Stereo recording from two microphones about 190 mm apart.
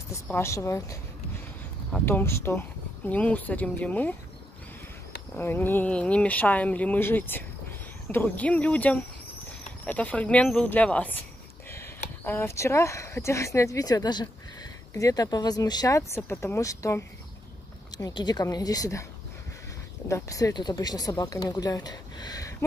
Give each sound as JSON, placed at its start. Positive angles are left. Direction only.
{"t": 0.3, "sound": "speech", "side_deg": 15}
{"t": 5.3, "sound": "speech", "side_deg": 10}
{"t": 12.3, "sound": "speech", "side_deg": 15}
{"t": 20.1, "sound": "speech", "side_deg": 15}